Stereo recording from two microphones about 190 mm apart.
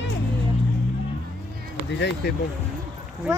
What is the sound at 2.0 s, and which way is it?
Speech, 65° left (ahead or behind).